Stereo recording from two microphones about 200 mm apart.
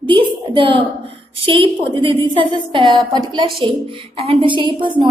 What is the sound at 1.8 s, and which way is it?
A woman's voice, 25° right (ahead or behind).